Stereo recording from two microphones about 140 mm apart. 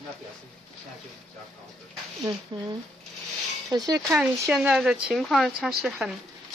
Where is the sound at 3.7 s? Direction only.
25° right (ahead or behind).